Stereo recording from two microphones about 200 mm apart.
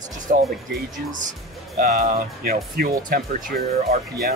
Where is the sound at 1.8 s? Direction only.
45° right (ahead or behind).